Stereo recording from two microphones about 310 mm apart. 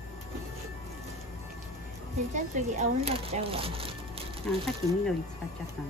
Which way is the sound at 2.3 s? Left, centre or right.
Right.